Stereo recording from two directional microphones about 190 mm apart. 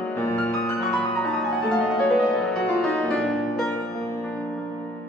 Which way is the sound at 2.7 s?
5° left (ahead or behind).